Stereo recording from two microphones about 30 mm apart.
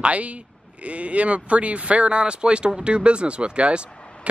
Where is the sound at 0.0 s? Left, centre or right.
Right.